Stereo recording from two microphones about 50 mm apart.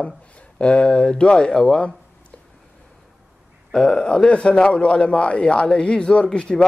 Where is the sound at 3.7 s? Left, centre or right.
Centre.